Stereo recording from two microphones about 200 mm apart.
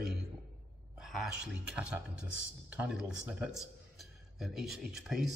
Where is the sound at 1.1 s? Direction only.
5° right (ahead or behind).